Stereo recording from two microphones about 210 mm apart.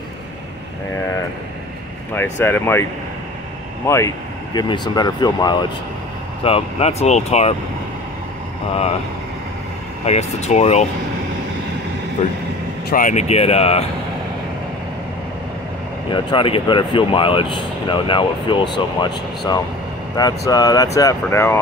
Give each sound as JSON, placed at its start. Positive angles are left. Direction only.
{"t": 2.3, "sound": "speech", "side_deg": 10}
{"t": 10.0, "sound": "speech", "side_deg": 30}
{"t": 12.9, "sound": "speech", "side_deg": 35}
{"t": 16.1, "sound": "speech", "side_deg": 25}